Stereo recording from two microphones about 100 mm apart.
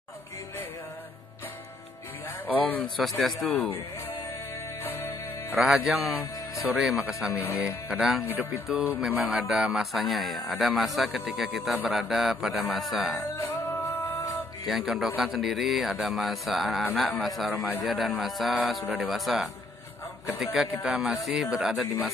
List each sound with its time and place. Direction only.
2.4 s a sound: 15° left (ahead or behind)
2.8 s a man's voice: centre (ahead or behind)
3.5 s speech: 15° left (ahead or behind)
4.8 s music: 25° left (ahead or behind)
5.5 s a man's voice: centre (ahead or behind)
14.7 s a man's voice: 5° right (ahead or behind)